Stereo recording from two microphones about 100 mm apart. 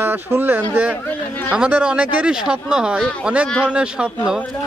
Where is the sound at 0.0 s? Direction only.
20° right (ahead or behind).